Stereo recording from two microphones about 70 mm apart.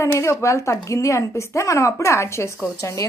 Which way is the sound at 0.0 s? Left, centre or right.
Left.